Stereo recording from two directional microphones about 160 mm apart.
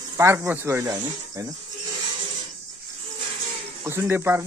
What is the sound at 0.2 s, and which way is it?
Speech, 15° right (ahead or behind).